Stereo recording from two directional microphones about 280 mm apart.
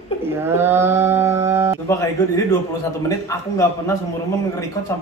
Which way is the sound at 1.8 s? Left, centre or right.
Centre.